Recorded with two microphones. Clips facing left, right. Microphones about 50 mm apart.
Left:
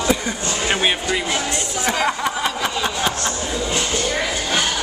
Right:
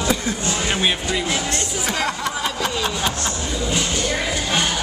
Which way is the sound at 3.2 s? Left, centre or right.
Centre.